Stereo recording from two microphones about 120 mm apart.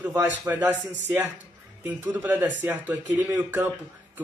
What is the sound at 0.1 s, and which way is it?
A man's voice, 15° right (ahead or behind).